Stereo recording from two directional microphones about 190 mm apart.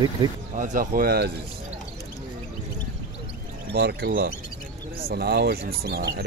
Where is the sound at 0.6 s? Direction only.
45° right (ahead or behind).